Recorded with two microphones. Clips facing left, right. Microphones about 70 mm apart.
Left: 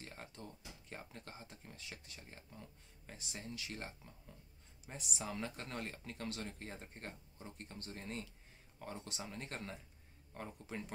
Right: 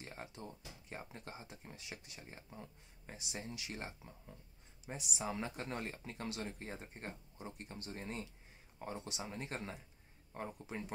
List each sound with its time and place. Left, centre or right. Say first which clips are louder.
0.0 s a sound: right 2 dB; centre
0.5 s speech: right 2 dB; right
3.2 s speech: right 2 dB; centre
4.8 s speech: right 3 dB; centre
5.2 s speech: right 3 dB; centre